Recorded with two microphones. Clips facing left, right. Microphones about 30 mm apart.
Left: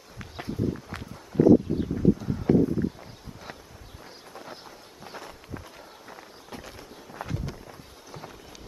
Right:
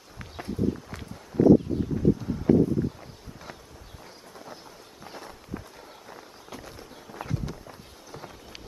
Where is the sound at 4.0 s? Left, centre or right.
Centre.